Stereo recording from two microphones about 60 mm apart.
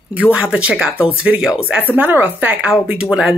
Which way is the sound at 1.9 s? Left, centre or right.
Right.